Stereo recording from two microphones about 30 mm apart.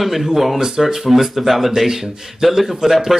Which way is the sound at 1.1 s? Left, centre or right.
Centre.